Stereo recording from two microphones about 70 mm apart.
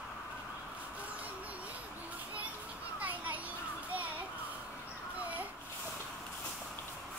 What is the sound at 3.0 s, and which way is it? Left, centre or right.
Children playing, right.